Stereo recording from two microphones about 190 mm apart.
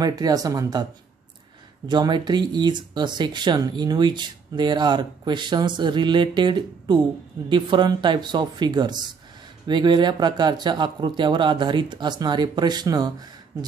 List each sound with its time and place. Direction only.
0.0 s speech: 20° right (ahead or behind)
1.9 s speech: 25° right (ahead or behind)